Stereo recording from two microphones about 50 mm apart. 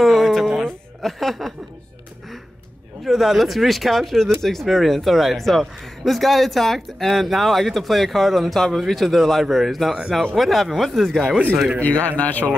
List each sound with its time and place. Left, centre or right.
0.0 s a sound: centre
3.0 s speech: centre
11.8 s speech: left